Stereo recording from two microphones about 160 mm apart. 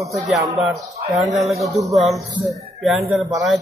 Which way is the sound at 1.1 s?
Centre (ahead or behind).